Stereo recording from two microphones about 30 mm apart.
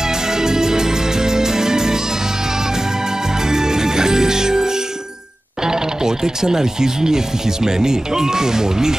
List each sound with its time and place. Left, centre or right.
0.0 s music: centre
3.3 s music: centre
5.6 s speech: centre